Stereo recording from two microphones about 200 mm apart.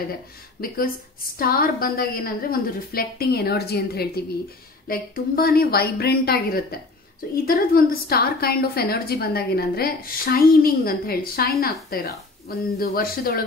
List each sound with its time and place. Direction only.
0.6 s a woman's voice: 50° left (ahead or behind)